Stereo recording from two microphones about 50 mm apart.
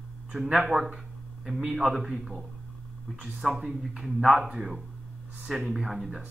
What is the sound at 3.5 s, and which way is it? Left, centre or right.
Speech, right.